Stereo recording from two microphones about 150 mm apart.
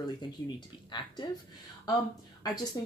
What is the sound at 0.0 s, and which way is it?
Speech, 30° left (ahead or behind).